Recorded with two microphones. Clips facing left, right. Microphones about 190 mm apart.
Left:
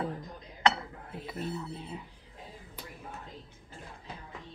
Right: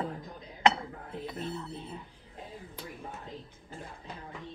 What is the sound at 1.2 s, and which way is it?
Speech, 5° left (ahead or behind).